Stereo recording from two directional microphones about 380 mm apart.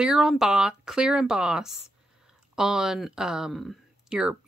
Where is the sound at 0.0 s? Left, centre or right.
Centre.